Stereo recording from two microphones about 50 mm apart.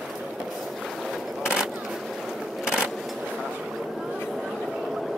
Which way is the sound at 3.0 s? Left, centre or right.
Centre.